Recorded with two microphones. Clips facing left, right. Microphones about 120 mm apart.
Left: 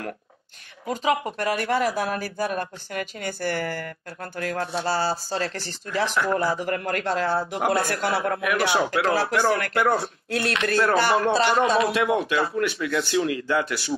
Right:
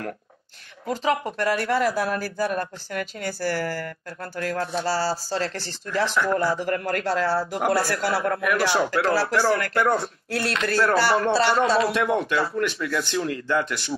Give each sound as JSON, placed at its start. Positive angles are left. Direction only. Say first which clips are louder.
{"t": 0.8, "sound": "a man's voice", "louder": "even", "side_deg": 10}